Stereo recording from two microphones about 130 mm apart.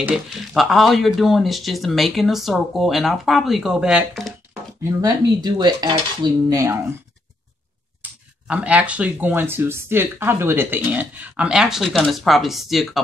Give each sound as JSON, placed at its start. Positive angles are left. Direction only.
{"t": 0.0, "sound": "speech", "side_deg": 0}
{"t": 4.8, "sound": "cutlery", "side_deg": -30}
{"t": 8.0, "sound": "speech", "side_deg": -10}